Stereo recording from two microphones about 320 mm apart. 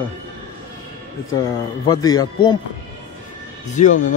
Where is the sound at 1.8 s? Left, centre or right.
Centre.